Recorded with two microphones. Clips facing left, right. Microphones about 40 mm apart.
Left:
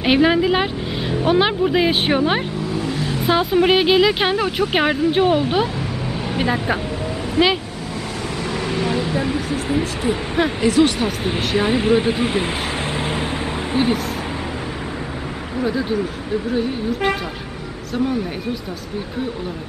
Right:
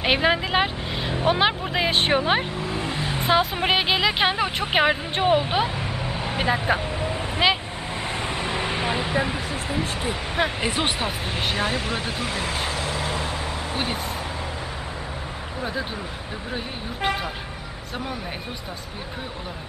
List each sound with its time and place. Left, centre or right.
0.0 s speech: centre
2.7 s vehicle: right
3.3 s speech: centre
7.4 s speech: centre
9.7 s speech: centre
10.6 s speech: centre
11.5 s speech: centre
15.6 s speech: centre